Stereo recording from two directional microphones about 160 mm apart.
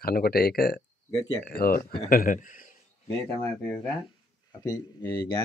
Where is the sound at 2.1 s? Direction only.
60° left (ahead or behind).